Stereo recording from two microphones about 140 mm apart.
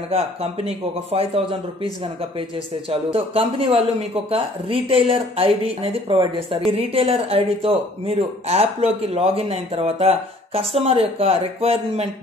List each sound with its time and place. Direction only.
0.1 s speech: 45° right (ahead or behind)
2.9 s speech: 45° right (ahead or behind)